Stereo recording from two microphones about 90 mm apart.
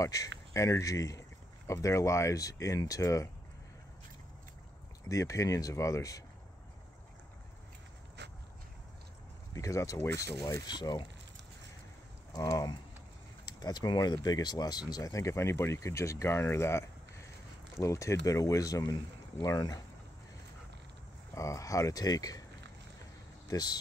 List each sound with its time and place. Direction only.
0.0 s speech: 40° left (ahead or behind)
5.0 s speech: 35° left (ahead or behind)
9.5 s speech: 35° left (ahead or behind)
10.7 s speech: 55° left (ahead or behind)
12.3 s speech: 40° left (ahead or behind)
21.4 s speech: 35° left (ahead or behind)
23.5 s speech: 45° left (ahead or behind)